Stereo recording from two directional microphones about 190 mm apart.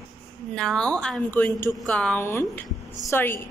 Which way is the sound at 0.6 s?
5° left (ahead or behind).